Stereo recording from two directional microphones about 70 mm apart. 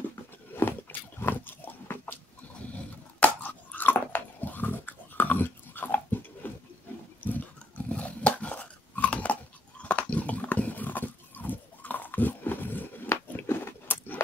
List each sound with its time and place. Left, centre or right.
0.9 s a sound: left
1.2 s pig: left
3.2 s chewing: left
7.2 s dog: left